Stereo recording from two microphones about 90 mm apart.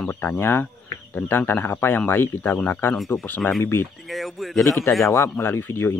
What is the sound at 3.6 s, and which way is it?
Speech, 25° left (ahead or behind).